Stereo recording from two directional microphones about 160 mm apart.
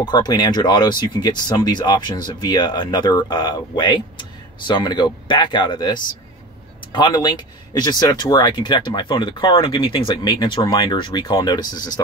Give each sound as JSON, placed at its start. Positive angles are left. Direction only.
{"t": 0.0, "sound": "speech", "side_deg": 25}